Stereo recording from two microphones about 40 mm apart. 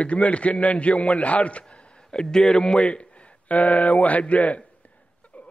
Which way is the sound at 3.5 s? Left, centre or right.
Left.